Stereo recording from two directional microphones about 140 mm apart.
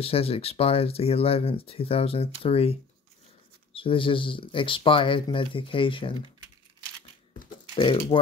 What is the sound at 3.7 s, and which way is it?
Speech, 40° left (ahead or behind).